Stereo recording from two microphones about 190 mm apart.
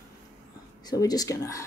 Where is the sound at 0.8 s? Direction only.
20° left (ahead or behind).